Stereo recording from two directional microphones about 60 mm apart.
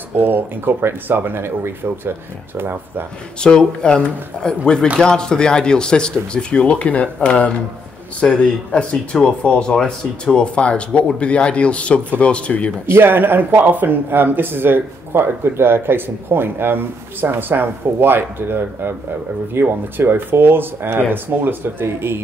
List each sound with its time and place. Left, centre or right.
0.2 s speech: right
3.3 s speech: centre
12.8 s speech: right